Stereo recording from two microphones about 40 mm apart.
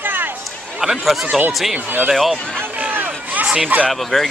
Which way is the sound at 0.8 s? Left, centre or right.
Centre.